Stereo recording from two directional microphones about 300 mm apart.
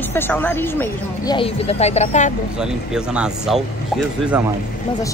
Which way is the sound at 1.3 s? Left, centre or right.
Centre.